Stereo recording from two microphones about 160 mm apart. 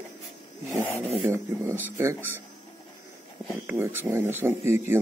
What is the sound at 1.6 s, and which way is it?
Speech, 15° right (ahead or behind).